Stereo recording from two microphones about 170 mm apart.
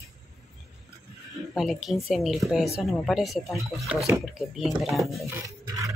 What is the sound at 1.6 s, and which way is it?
A woman's voice, centre (ahead or behind).